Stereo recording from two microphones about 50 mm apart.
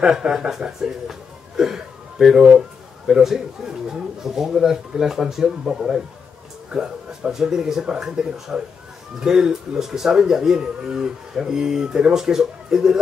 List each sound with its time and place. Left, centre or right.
0.0 s speech: centre